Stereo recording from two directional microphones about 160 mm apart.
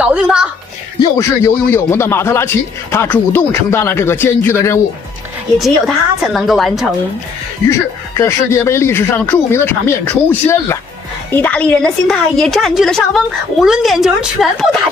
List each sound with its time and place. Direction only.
0.0 s a woman's voice: 5° right (ahead or behind)
0.9 s a man's voice: 20° left (ahead or behind)
6.2 s a woman's voice: centre (ahead or behind)
7.7 s a man's voice: 15° left (ahead or behind); by 14.8 s centre (ahead or behind)